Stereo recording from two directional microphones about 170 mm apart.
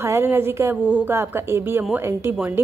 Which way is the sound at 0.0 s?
15° right (ahead or behind).